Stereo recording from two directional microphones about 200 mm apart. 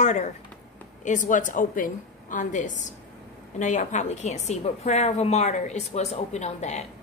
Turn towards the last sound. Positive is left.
turn(degrees=35)  # may be behind; listen again after turning